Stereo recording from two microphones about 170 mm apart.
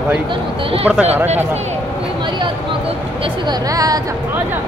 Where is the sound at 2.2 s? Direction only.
30° right (ahead or behind).